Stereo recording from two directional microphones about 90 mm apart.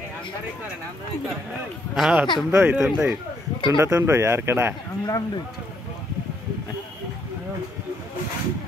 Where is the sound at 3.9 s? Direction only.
30° right (ahead or behind).